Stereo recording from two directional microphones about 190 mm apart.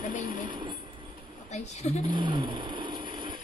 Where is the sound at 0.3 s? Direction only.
25° right (ahead or behind).